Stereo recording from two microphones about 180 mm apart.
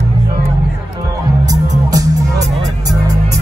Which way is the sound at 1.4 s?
20° right (ahead or behind).